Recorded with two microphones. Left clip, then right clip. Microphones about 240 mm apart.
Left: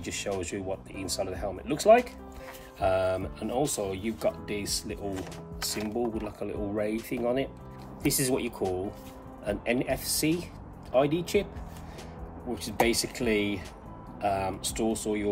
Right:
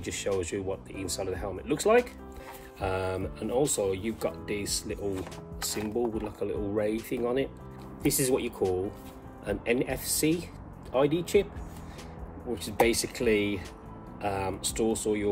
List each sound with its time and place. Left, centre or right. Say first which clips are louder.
0.0 s speech: right 2 dB; centre
12.5 s speech: right 1 dB; centre